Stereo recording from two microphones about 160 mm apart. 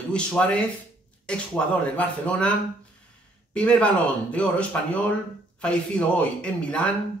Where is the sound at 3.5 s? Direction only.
5° left (ahead or behind).